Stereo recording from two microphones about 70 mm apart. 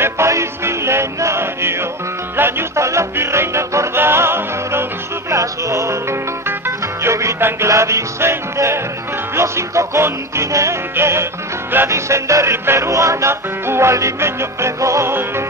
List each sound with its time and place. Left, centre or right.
0.0 s music: right
5.3 s music: right